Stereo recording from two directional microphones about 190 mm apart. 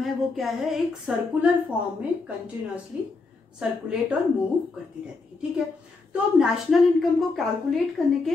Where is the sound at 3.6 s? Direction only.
5° right (ahead or behind).